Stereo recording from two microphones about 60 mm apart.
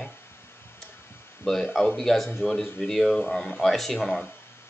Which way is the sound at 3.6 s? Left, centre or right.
Centre.